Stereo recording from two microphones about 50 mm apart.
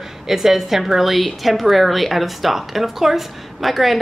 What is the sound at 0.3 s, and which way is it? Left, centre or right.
A woman's voice, centre.